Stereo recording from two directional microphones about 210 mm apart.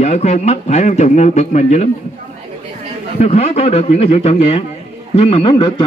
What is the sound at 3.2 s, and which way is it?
A man's voice, 30° left (ahead or behind).